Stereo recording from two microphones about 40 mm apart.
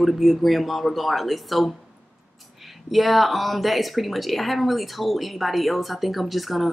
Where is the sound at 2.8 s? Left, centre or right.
Centre.